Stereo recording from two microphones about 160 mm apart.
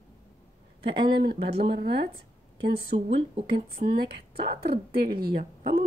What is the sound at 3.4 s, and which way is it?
Speech, 60° right (ahead or behind).